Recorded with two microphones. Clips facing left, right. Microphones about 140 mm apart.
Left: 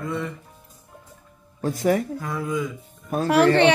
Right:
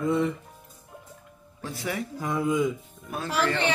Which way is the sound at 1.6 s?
45° left (ahead or behind).